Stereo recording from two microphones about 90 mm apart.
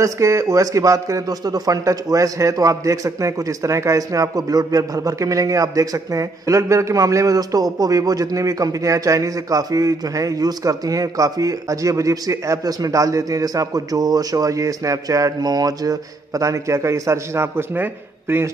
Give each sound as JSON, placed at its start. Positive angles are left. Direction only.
{"t": 0.0, "sound": "a man's voice", "side_deg": -35}